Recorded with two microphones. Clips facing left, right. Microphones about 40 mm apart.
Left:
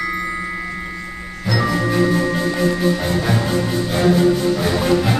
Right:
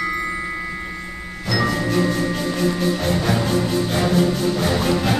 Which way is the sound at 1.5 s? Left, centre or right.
Centre.